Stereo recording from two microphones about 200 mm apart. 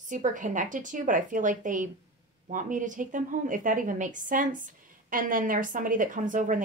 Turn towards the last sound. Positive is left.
turn(degrees=-40)  # may be behind; listen again after turning